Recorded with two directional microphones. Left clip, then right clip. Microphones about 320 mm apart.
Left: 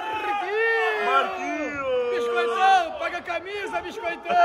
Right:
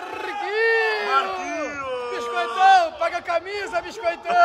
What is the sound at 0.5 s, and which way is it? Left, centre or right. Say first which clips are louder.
Run: right 4 dB; right.